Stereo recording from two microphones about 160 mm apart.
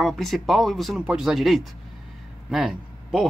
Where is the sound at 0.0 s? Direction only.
Centre (ahead or behind).